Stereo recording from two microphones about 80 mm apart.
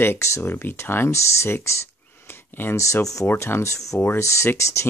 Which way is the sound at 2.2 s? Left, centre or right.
Left.